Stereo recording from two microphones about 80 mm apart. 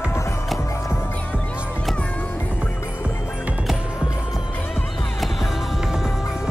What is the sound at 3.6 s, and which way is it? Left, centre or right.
Music, centre.